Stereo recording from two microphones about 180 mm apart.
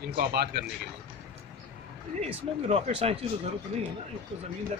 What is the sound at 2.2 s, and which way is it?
Speech, 35° right (ahead or behind).